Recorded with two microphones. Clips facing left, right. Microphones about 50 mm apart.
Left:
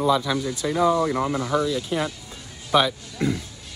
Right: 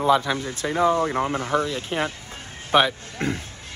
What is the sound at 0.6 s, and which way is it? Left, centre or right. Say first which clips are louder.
A man's voice: even; right.